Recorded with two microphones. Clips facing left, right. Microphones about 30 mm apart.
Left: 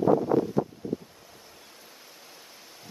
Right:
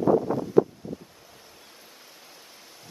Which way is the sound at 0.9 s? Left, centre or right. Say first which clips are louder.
Left 5 dB; centre.